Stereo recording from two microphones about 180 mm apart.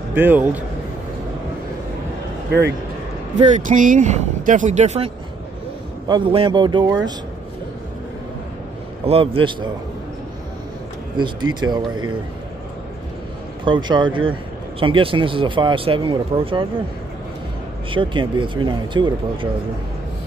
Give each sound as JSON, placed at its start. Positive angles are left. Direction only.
{"t": 0.1, "sound": "a man's voice", "side_deg": -10}
{"t": 3.3, "sound": "speech", "side_deg": -40}
{"t": 6.0, "sound": "speech", "side_deg": -25}
{"t": 9.0, "sound": "speech", "side_deg": -30}
{"t": 11.1, "sound": "speech", "side_deg": -25}
{"t": 13.7, "sound": "speech", "side_deg": -25}
{"t": 17.9, "sound": "speech", "side_deg": -25}